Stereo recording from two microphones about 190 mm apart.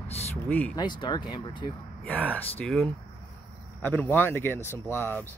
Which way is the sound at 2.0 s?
10° left (ahead or behind).